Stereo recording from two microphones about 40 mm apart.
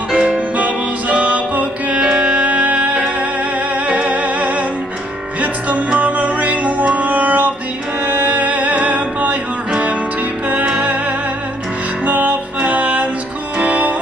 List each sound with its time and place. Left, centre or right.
0.1 s music: right
12.1 s music: right